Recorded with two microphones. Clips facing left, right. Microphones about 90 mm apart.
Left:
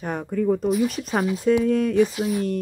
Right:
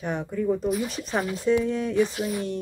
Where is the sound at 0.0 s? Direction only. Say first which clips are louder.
Left 3 dB; 45° left (ahead or behind).